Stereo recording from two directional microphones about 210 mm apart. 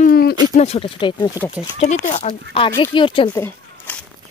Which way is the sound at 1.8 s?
35° left (ahead or behind).